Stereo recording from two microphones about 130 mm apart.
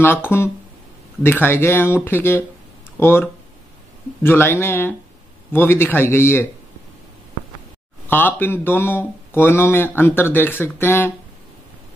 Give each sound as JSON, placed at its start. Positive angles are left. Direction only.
{"t": 0.0, "sound": "speech", "side_deg": 15}
{"t": 8.1, "sound": "speech", "side_deg": 15}